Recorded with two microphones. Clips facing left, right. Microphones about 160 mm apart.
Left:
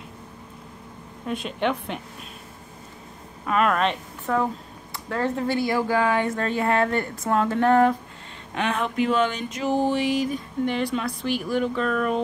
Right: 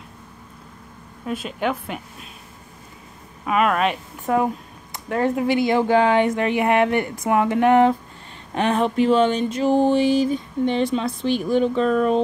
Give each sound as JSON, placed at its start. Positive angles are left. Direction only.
{"t": 1.2, "sound": "a woman's voice", "side_deg": -5}
{"t": 3.4, "sound": "speech", "side_deg": -5}
{"t": 4.3, "sound": "speech", "side_deg": -20}
{"t": 8.5, "sound": "a sound", "side_deg": -35}